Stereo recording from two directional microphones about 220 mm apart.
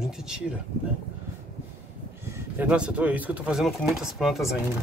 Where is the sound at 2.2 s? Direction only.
10° right (ahead or behind).